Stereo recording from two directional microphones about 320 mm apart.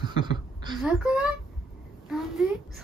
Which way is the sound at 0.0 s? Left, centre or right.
Centre.